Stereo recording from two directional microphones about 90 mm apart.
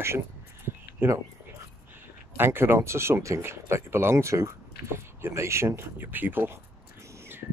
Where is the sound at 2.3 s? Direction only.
25° right (ahead or behind).